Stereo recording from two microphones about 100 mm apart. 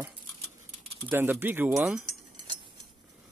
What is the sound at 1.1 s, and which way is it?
Speech, 20° right (ahead or behind).